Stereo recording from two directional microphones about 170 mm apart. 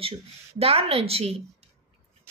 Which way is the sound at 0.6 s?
35° right (ahead or behind).